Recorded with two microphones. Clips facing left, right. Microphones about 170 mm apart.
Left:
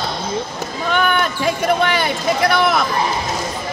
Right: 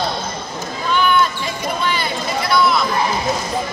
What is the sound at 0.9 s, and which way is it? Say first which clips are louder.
Basketball bounce: right 2 dB; 60° left (ahead or behind).